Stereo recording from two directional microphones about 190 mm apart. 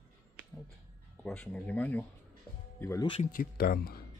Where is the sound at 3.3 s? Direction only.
55° left (ahead or behind).